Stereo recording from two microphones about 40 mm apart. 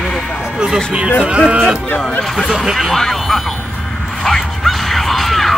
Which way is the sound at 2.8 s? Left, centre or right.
Centre.